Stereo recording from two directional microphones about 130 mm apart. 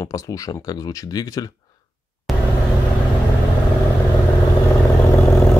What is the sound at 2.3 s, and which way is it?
Vehicle, centre (ahead or behind).